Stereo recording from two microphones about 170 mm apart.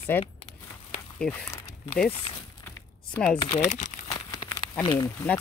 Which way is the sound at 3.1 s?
5° left (ahead or behind).